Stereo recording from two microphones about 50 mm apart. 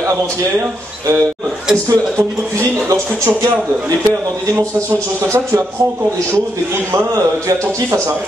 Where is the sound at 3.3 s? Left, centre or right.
Right.